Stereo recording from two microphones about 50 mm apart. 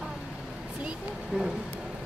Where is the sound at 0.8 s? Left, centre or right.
Centre.